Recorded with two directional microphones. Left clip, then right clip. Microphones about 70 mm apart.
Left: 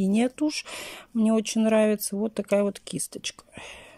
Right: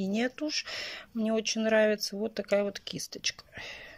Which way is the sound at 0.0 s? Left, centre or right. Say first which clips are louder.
Left 6 dB; left.